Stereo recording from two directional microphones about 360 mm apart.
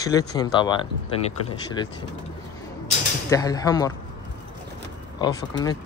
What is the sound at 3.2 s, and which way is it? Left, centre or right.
Speech, centre.